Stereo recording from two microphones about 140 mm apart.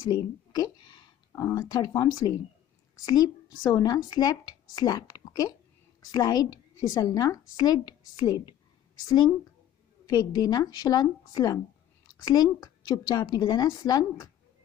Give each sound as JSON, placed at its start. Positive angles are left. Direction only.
{"t": 0.1, "sound": "a woman's voice", "side_deg": 30}
{"t": 9.0, "sound": "a woman's voice", "side_deg": 30}